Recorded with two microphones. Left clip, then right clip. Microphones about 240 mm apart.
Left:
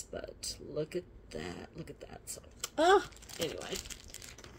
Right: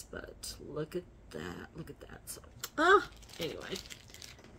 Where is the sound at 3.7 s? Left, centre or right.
Left.